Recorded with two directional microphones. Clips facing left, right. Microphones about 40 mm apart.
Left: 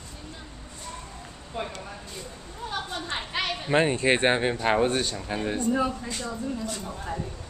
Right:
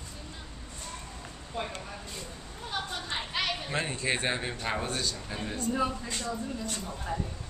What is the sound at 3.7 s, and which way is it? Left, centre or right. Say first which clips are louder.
Speech: left 13 dB; left.